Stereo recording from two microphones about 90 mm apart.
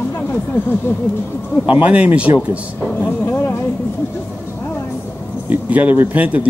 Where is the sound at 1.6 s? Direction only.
15° right (ahead or behind).